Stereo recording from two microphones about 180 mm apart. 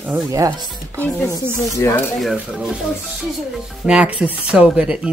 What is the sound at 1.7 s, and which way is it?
Speech, 15° left (ahead or behind).